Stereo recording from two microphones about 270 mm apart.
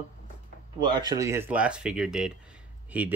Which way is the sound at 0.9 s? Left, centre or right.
Centre.